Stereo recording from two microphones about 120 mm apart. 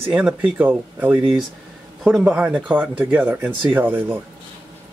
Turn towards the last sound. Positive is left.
turn(degrees=-15)  # may be behind; listen again after turning